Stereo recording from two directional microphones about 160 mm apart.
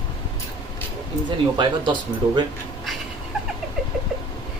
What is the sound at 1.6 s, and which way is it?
Speech, 30° right (ahead or behind).